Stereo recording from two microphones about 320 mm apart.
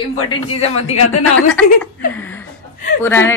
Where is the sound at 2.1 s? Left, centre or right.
Centre.